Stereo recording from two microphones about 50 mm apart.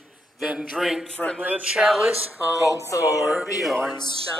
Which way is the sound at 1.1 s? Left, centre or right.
Centre.